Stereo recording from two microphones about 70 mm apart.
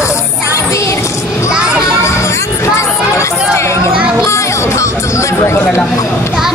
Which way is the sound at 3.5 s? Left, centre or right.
Left.